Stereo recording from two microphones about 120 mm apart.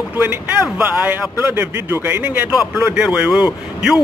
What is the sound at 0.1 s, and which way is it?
A man's voice, 15° right (ahead or behind).